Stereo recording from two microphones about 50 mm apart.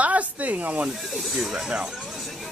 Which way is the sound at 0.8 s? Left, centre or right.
Centre.